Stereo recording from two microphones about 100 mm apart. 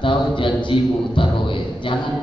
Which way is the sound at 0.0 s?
55° left (ahead or behind).